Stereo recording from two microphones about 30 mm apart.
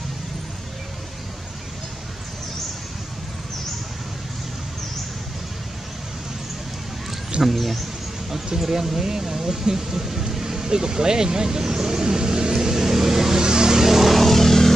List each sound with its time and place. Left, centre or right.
7.4 s a sound: centre
8.5 s speech: centre
10.4 s vehicle: right
14.1 s vehicle: centre